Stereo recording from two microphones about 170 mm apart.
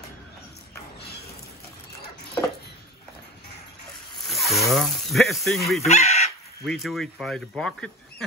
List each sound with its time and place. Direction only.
4.3 s speech: centre (ahead or behind)
5.8 s speech: 40° left (ahead or behind)
6.6 s speech: centre (ahead or behind)